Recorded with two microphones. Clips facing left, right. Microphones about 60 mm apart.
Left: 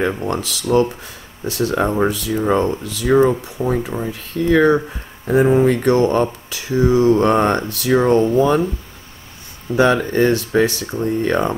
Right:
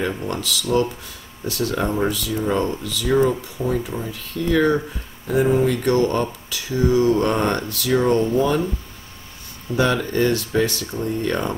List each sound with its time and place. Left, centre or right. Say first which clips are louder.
0.0 s speech: left 4 dB; left
3.7 s speech: left 3 dB; left
9.8 s speech: left 5 dB; left